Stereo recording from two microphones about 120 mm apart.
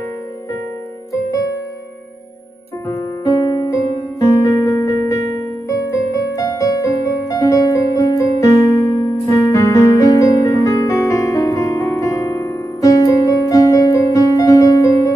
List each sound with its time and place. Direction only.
2.9 s music: 30° left (ahead or behind)